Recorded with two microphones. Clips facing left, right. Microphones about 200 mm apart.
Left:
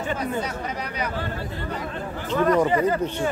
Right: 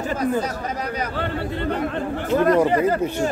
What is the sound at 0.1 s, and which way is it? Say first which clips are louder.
Speech: right 5 dB; 40° right (ahead or behind).